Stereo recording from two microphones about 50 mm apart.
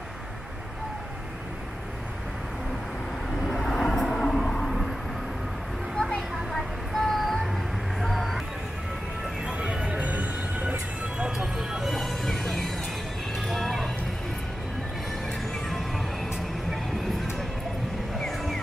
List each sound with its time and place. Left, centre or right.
3.4 s vehicle: centre
5.9 s a sound: centre
8.0 s vehicle: centre
9.5 s music: centre
11.2 s music: centre
11.8 s music: centre
18.1 s vehicle: centre